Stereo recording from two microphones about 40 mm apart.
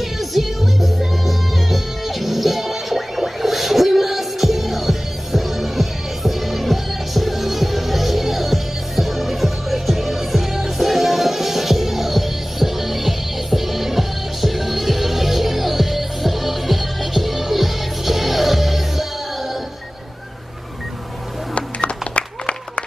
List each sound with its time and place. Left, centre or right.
0.0 s music: centre
21.5 s music: left